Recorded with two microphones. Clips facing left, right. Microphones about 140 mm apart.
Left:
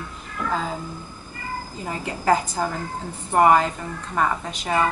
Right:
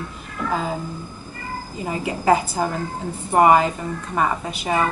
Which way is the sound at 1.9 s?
10° right (ahead or behind).